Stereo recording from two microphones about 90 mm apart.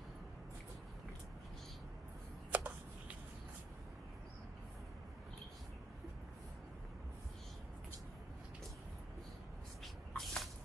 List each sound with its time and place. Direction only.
2.5 s shuffling cards: 15° right (ahead or behind)
10.1 s spray: 5° left (ahead or behind)